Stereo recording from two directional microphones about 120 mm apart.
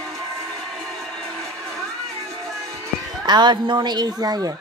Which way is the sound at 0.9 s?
Centre (ahead or behind).